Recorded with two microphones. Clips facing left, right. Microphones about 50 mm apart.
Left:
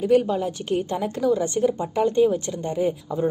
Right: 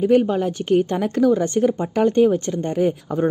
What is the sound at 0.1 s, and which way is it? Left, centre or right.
A woman's voice, right.